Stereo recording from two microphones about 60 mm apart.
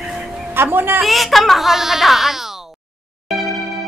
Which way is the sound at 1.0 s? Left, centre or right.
Centre.